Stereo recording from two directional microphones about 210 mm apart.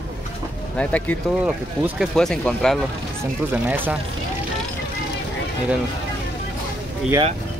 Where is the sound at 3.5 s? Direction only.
10° right (ahead or behind).